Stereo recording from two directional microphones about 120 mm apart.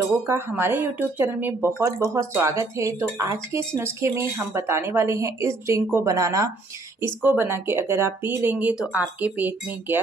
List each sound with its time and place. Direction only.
0.3 s speech: 20° right (ahead or behind)
1.8 s speech: 30° right (ahead or behind)